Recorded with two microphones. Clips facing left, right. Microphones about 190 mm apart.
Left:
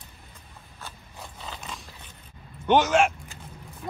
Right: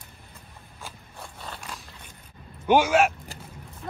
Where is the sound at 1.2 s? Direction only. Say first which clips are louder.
Even; centre (ahead or behind).